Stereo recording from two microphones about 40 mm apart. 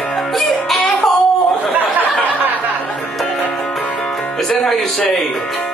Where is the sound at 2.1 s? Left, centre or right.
Left.